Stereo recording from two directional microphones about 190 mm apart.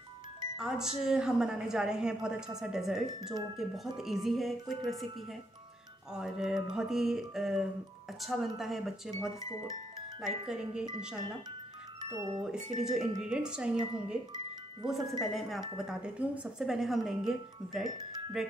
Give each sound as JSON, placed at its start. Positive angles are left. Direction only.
{"t": 0.6, "sound": "speech", "side_deg": -5}
{"t": 6.1, "sound": "speech", "side_deg": -5}
{"t": 9.4, "sound": "speech", "side_deg": 15}
{"t": 10.2, "sound": "speech", "side_deg": -5}
{"t": 12.0, "sound": "speech", "side_deg": -20}
{"t": 12.8, "sound": "speech", "side_deg": -5}